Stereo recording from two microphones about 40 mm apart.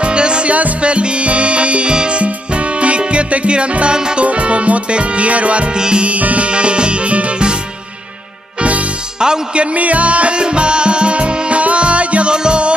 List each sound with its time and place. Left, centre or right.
0.0 s music: right
5.8 s music: centre
6.0 s music: right
8.5 s music: right
9.2 s music: right